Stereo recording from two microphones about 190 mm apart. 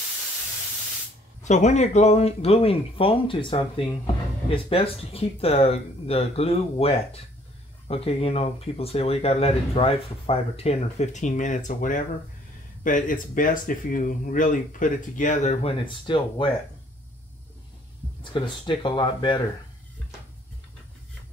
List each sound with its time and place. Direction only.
1.4 s speech: 40° left (ahead or behind)
18.2 s speech: 25° left (ahead or behind)